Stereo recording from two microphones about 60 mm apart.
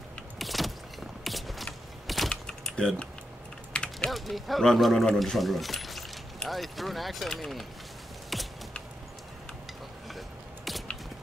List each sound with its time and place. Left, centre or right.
0.4 s vehicle: centre
1.2 s mechanisms: centre
3.7 s typing: centre
4.1 s speech: centre
8.3 s creak: centre
10.1 s a sound: centre